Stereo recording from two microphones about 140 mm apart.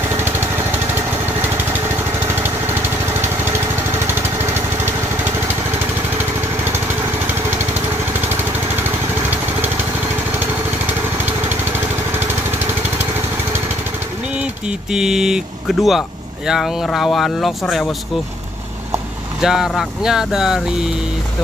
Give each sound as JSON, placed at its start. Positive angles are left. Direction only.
{"t": 0.2, "sound": "lawn mower", "side_deg": -15}
{"t": 4.1, "sound": "lawn mower", "side_deg": -15}
{"t": 11.2, "sound": "lawn mower", "side_deg": -15}
{"t": 14.3, "sound": "speech", "side_deg": -5}
{"t": 19.4, "sound": "speech", "side_deg": -5}